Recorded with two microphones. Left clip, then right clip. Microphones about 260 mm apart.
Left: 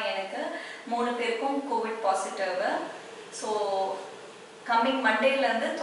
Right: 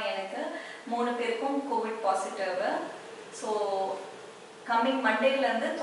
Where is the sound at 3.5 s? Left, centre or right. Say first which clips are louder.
Left 2 dB; right.